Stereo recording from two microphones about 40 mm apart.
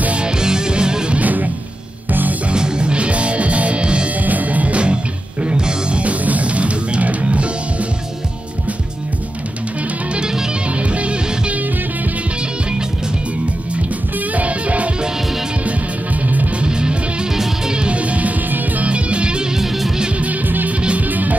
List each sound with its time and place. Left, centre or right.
0.2 s music: right
1.1 s music: right
2.5 s music: right
4.2 s music: right
10.1 s music: centre
10.8 s music: right
14.3 s music: right
16.5 s music: right
17.3 s music: centre
17.7 s music: right
19.6 s music: centre
20.4 s music: right